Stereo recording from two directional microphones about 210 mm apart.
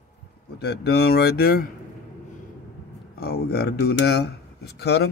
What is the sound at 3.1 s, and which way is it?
Speech, 50° left (ahead or behind).